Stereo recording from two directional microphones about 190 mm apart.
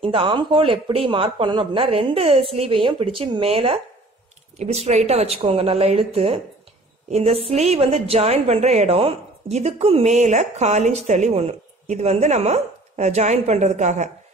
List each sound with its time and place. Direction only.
0.0 s a man's voice: 30° right (ahead or behind)